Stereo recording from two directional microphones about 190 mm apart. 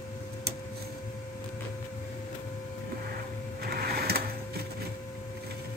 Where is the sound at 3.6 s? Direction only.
55° right (ahead or behind).